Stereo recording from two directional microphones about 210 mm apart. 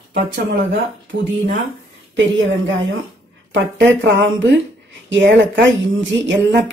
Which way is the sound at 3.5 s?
60° right (ahead or behind).